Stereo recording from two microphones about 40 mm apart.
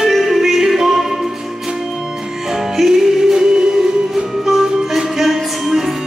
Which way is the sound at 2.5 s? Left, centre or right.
Centre.